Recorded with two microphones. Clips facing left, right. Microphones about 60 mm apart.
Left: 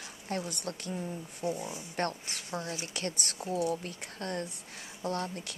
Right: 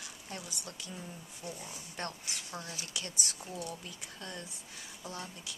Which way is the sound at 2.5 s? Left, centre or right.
Left.